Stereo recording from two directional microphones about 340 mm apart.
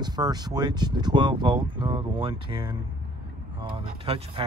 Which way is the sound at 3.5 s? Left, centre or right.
Centre.